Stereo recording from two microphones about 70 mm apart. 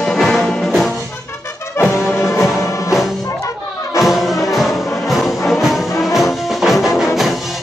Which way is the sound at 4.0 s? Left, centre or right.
Centre.